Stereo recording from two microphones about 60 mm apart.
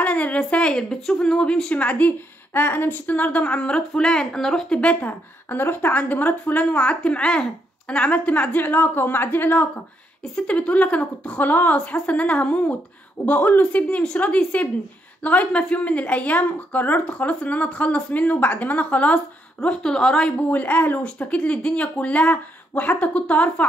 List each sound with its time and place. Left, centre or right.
0.0 s speech: left
5.5 s a woman's voice: left
10.2 s speech: centre
20.3 s speech: left